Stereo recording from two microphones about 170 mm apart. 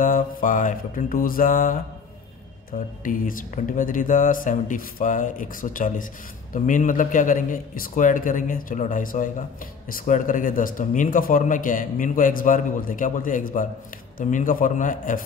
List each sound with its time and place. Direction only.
0.0 s speech: 55° left (ahead or behind)
3.0 s speech: 55° left (ahead or behind)